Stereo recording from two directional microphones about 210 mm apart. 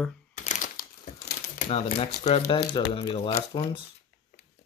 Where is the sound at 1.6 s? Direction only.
35° left (ahead or behind).